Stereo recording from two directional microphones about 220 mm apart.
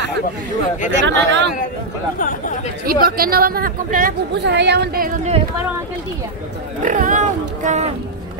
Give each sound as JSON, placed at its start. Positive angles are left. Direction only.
{"t": 1.0, "sound": "speech", "side_deg": -55}
{"t": 2.1, "sound": "speech", "side_deg": 35}
{"t": 2.9, "sound": "speech", "side_deg": -40}
{"t": 6.8, "sound": "speech", "side_deg": -35}